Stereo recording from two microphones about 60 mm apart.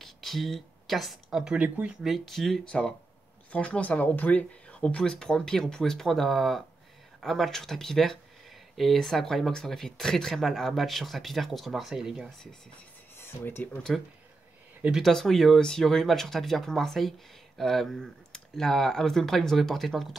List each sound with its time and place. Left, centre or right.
0.0 s a sound: centre
1.4 s speech: centre
2.0 s speech: centre
2.6 s speech: centre
13.2 s speech: left
13.9 s speech: centre